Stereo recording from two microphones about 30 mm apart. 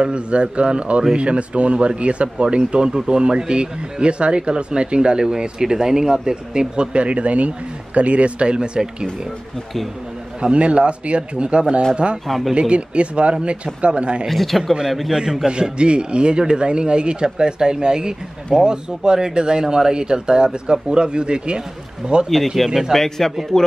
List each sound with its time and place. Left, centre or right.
0.0 s speech: right
2.5 s speech: right
10.5 s speech: right
12.3 s speech: centre
12.5 s speech: right
14.2 s speech: centre
15.1 s speech: centre
15.8 s speech: right
23.0 s a man's voice: centre